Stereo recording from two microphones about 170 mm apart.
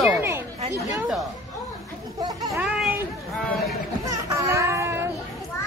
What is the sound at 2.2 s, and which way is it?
Speech, 20° right (ahead or behind).